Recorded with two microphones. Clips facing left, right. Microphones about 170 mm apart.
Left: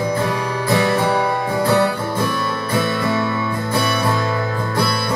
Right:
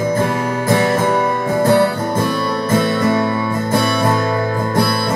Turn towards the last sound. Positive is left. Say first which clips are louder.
# right 4 dB
turn(degrees=-45)  # may be behind; listen again after turning